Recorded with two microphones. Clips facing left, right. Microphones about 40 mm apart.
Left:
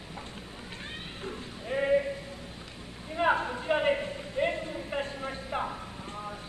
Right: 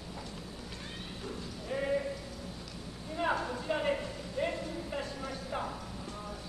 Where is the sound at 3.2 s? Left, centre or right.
Left.